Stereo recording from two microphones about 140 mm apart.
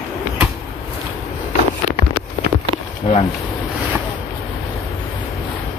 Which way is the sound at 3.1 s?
45° left (ahead or behind).